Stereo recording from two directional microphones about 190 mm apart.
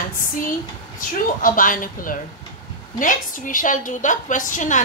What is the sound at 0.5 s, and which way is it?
A woman's voice, 45° left (ahead or behind).